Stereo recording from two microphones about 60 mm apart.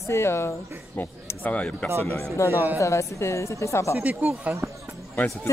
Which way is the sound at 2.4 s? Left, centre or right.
Left.